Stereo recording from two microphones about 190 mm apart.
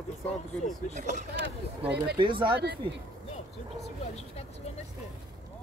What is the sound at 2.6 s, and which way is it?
Speech, 65° right (ahead or behind).